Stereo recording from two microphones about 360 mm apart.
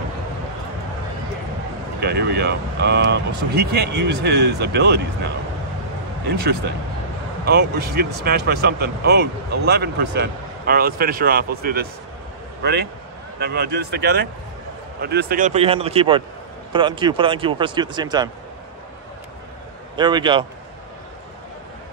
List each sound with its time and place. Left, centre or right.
2.0 s speech: right
13.4 s speech: right; by 18.3 s centre
20.0 s speech: centre